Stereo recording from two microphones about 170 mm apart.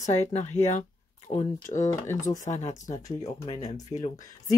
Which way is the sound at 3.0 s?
20° left (ahead or behind).